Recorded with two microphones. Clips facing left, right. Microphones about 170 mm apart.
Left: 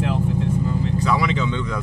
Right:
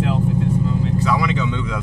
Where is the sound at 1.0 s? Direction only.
Centre (ahead or behind).